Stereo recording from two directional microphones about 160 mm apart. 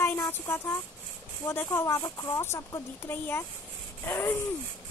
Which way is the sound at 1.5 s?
15° left (ahead or behind).